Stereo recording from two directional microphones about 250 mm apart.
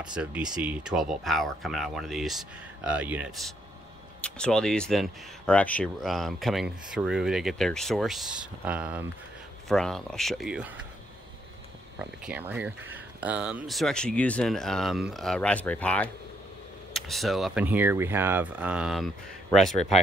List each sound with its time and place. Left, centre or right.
0.0 s speech: centre
12.0 s speech: centre